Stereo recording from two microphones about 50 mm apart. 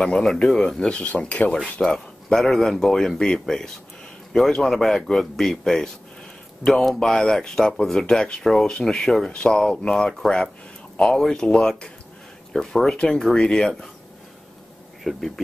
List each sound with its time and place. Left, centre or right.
0.0 s speech: centre
0.7 s speech: left
1.8 s speech: centre
9.3 s speech: centre
15.0 s speech: centre